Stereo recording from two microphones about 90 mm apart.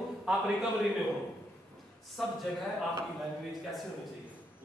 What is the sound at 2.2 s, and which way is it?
Speech, centre (ahead or behind).